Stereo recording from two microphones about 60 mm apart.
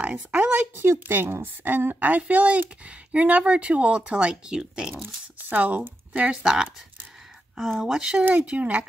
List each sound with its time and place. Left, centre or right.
0.0 s speech: right
0.7 s speech: right; by 4.9 s centre
5.5 s speech: right
6.4 s speech: centre
7.8 s speech: centre
8.3 s speech: right